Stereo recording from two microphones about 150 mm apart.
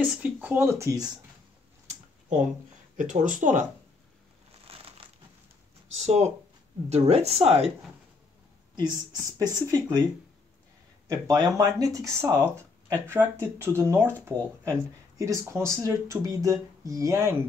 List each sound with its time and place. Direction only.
0.0 s speech: 10° right (ahead or behind); by 1.2 s 25° right (ahead or behind)
1.9 s a sound: 55° right (ahead or behind)
3.0 s speech: 55° right (ahead or behind)
4.6 s crumpling: 40° right (ahead or behind)
5.9 s speech: 45° right (ahead or behind)
8.7 s speech: 25° right (ahead or behind)
11.1 s speech: 25° right (ahead or behind)